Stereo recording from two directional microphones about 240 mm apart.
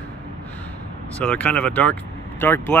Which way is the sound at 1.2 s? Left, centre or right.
Centre.